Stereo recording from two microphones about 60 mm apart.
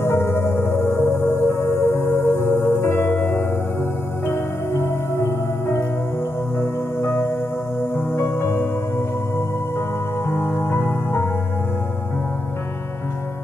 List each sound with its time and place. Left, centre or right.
0.0 s music: left
10.2 s music: left